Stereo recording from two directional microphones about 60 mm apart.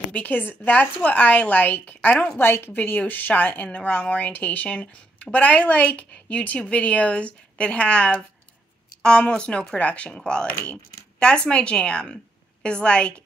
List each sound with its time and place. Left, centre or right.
0.1 s speech: left
2.3 s a woman's voice: left; by 13.1 s centre